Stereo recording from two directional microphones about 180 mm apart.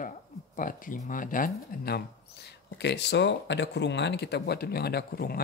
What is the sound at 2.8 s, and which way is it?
Speech, 70° left (ahead or behind).